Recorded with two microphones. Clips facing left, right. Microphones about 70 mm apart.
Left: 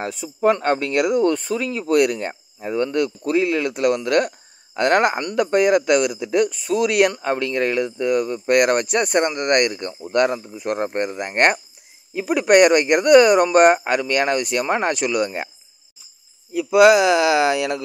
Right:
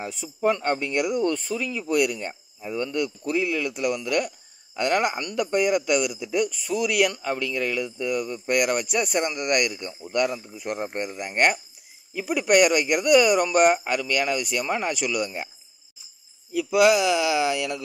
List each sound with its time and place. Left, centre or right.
0.0 s speech: left
16.5 s speech: left